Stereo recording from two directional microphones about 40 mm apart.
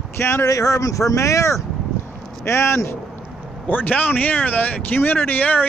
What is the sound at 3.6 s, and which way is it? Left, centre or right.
Speech, left.